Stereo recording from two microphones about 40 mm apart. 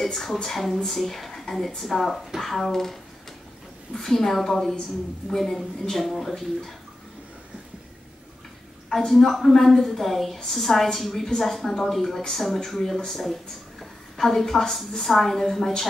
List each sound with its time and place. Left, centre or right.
0.0 s a woman's voice: centre
8.8 s a woman's voice: centre